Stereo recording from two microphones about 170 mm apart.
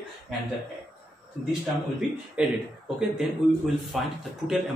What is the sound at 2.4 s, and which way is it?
Speech, 5° right (ahead or behind).